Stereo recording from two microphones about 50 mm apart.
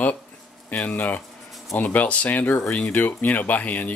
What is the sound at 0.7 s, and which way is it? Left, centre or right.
Speech, left.